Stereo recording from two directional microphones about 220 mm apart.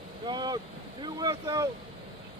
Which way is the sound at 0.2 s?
20° right (ahead or behind).